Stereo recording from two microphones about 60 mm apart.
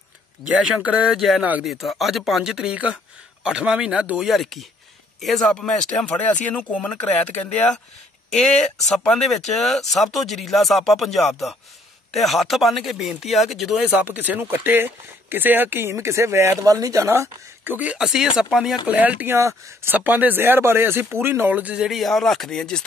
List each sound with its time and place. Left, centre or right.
0.7 s speech: right
1.1 s speech: centre
2.7 s speech: right
4.2 s speech: centre; by 7.8 s left
8.3 s speech: centre
13.9 s speech: right
15.9 s speech: right
16.6 s speech: right
17.6 s speech: right
17.9 s speech: centre
18.9 s speech: right
19.2 s speech: right
19.9 s speech: right
21.7 s speech: centre